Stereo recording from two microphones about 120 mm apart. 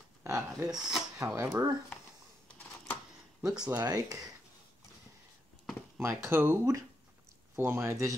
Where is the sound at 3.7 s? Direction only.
30° right (ahead or behind).